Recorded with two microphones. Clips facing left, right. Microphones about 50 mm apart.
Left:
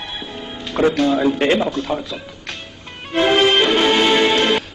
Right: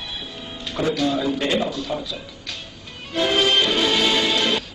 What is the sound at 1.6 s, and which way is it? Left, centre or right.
Speech, left.